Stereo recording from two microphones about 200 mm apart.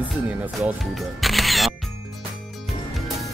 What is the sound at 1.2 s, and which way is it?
Music, centre (ahead or behind).